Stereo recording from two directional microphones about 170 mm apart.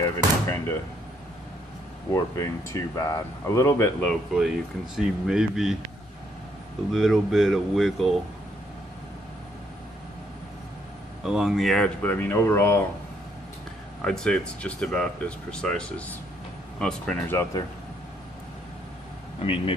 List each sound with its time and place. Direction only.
0.0 s speech: 15° left (ahead or behind)
2.0 s speech: 20° left (ahead or behind); by 5.8 s 5° right (ahead or behind)
6.9 s speech: centre (ahead or behind)
11.2 s speech: centre (ahead or behind); by 12.8 s 15° left (ahead or behind)
14.0 s speech: 5° left (ahead or behind)
19.4 s speech: 30° left (ahead or behind)